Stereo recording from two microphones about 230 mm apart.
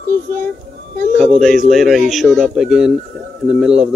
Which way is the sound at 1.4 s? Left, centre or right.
Centre.